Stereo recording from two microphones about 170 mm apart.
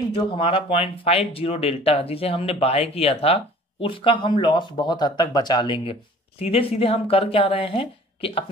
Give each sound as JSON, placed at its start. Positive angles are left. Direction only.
{"t": 0.1, "sound": "speech", "side_deg": 30}